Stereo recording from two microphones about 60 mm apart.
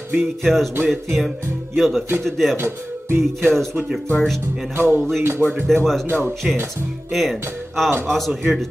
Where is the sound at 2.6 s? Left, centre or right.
Right.